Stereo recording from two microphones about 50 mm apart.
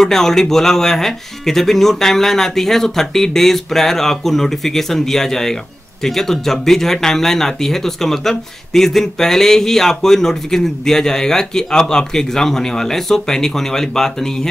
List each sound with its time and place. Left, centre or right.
0.0 s speech: centre